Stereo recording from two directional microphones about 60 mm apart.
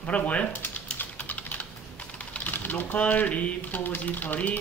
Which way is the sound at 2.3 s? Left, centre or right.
Left.